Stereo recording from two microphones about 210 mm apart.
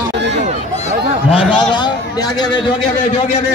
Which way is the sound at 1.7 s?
20° left (ahead or behind).